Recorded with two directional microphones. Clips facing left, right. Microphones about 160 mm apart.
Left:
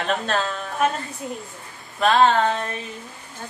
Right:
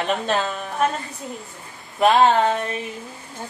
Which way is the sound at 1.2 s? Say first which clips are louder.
Left 2 dB; 5° left (ahead or behind).